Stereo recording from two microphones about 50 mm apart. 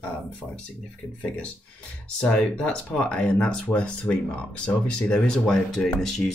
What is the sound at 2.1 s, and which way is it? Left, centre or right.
Speech, left.